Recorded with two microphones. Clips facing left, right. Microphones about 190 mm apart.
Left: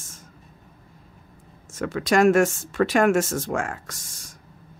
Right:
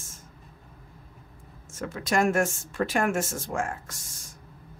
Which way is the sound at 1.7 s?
80° left.